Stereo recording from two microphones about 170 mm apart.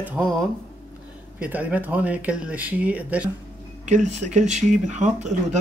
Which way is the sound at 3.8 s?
45° right (ahead or behind).